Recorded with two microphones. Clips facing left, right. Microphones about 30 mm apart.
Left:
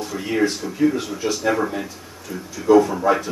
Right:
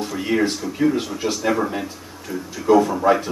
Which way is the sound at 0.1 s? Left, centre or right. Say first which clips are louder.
Even; centre.